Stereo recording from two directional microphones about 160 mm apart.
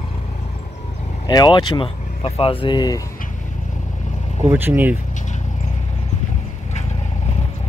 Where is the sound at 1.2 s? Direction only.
25° left (ahead or behind).